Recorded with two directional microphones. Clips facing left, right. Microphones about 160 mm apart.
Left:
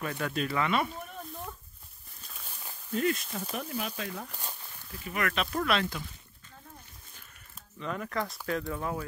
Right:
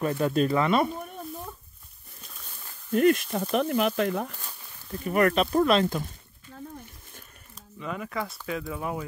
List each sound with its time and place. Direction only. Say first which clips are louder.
0.0 s speech: right 8 dB; 30° right (ahead or behind)
2.9 s speech: right 8 dB; 60° right (ahead or behind)
3.5 s speech: right 13 dB; 70° right (ahead or behind)
4.9 s speech: right 9 dB; 40° right (ahead or behind)
7.8 s speech: right 1 dB; 5° right (ahead or behind)